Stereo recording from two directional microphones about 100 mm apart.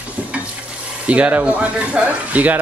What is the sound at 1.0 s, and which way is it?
A woman's voice, 15° right (ahead or behind).